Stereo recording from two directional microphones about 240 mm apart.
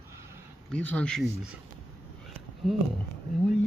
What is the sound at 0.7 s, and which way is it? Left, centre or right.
Speech, centre.